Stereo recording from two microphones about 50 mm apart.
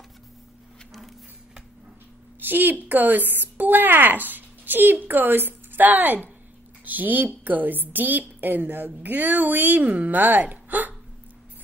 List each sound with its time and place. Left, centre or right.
2.4 s a woman's voice: right